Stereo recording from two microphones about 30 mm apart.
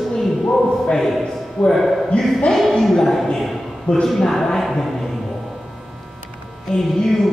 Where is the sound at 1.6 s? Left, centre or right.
Left.